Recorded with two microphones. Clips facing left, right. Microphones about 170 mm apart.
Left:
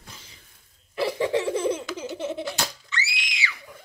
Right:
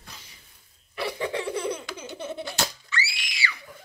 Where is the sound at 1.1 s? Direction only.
25° left (ahead or behind).